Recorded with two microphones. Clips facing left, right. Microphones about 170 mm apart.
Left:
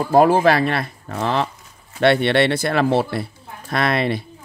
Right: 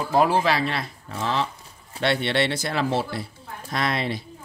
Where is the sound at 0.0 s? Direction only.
50° left (ahead or behind).